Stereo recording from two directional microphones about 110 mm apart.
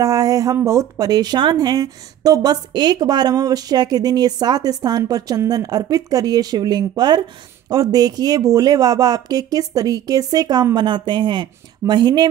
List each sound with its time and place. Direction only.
0.0 s a woman's voice: 35° right (ahead or behind)